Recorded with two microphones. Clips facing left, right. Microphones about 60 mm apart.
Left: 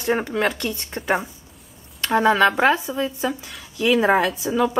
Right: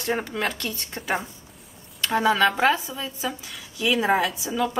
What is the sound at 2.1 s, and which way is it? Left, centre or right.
Speech, centre.